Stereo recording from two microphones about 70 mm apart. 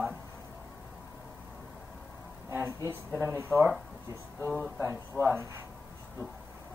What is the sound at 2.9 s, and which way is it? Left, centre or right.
Speech, right.